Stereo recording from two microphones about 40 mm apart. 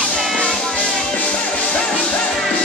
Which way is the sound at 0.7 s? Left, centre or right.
Left.